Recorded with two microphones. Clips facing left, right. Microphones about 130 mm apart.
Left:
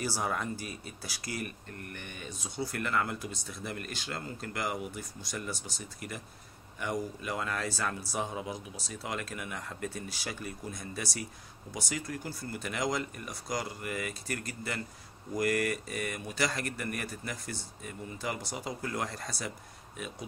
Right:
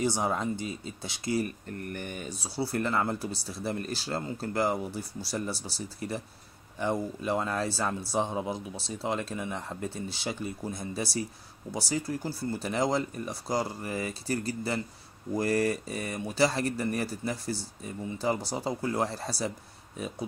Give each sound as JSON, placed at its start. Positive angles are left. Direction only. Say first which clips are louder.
{"t": 0.0, "sound": "speech", "louder": "right 5 dB", "side_deg": -20}